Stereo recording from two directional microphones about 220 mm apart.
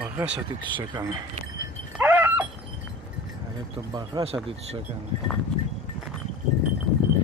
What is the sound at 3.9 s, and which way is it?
Speech, 20° right (ahead or behind).